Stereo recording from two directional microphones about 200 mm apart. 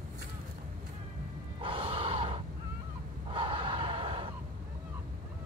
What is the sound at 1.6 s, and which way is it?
Gasp, 25° right (ahead or behind).